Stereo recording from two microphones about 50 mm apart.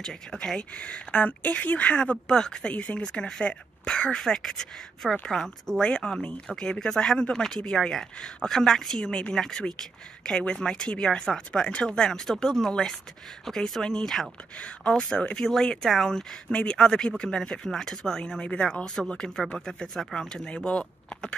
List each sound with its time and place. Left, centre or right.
0.0 s speech: centre
0.6 s speech: left
2.0 s speech: centre
2.7 s speech: left; by 19.9 s centre
20.4 s speech: left